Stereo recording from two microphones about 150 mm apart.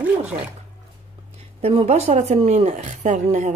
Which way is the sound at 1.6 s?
40° right (ahead or behind).